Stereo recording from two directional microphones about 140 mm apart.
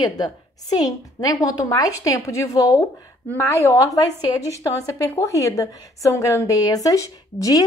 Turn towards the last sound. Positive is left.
turn(degrees=25)  # may be behind; listen again after turning